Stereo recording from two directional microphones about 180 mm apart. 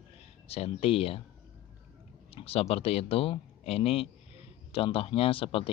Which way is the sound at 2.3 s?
35° left (ahead or behind).